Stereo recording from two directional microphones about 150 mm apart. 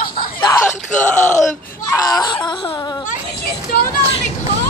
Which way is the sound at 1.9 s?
25° left (ahead or behind).